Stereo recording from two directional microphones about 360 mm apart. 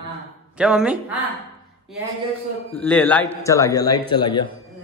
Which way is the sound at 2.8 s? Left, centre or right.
Centre.